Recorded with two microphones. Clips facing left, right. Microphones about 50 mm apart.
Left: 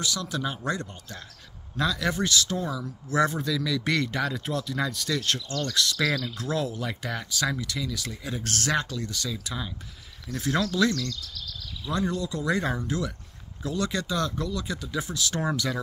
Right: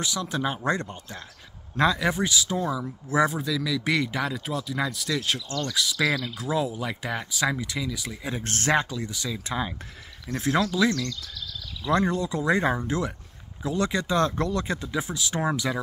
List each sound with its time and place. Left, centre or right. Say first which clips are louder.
0.0 s speech: right 2 dB; right
2.0 s speech: right 1 dB; centre
8.3 s speech: right 3 dB; right
8.8 s speech: right 1 dB; centre
9.5 s speech: right 5 dB; right
10.5 s speech: right 1 dB; centre
12.1 s speech: right 3 dB; right
14.1 s speech: right 5 dB; right
14.9 s speech: right 1 dB; centre